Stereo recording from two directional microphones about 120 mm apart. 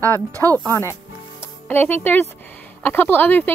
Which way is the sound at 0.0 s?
20° left (ahead or behind).